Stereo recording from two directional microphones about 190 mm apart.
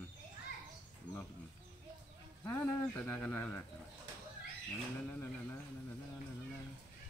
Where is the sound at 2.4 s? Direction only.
10° left (ahead or behind).